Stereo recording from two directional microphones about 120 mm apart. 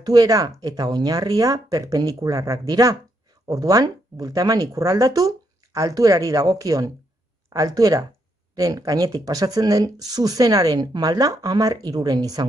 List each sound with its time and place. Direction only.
0.0 s speech: 30° right (ahead or behind)